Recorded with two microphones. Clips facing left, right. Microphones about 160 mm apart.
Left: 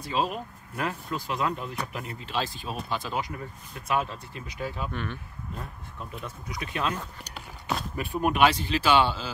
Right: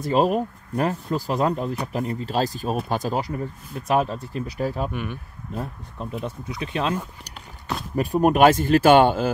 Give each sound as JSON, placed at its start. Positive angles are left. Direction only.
{"t": 0.0, "sound": "speech", "side_deg": -45}
{"t": 4.9, "sound": "speech", "side_deg": -10}
{"t": 6.2, "sound": "speech", "side_deg": -25}
{"t": 7.9, "sound": "speech", "side_deg": -40}